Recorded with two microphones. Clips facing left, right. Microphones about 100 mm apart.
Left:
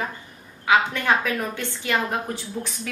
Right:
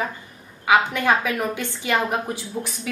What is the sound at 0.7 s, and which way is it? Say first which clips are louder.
A woman's voice: right 2 dB; 15° right (ahead or behind).